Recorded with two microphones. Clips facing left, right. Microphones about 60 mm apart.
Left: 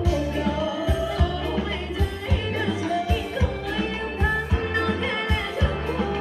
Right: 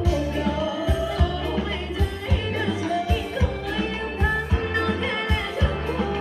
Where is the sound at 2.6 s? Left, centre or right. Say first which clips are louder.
Even; centre.